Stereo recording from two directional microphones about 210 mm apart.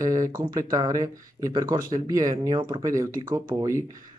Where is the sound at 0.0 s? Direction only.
15° right (ahead or behind).